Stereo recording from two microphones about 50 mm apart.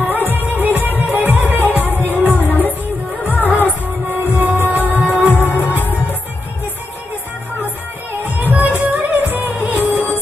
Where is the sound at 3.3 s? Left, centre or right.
Left.